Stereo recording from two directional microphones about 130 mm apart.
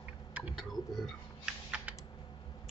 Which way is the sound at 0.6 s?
Centre (ahead or behind).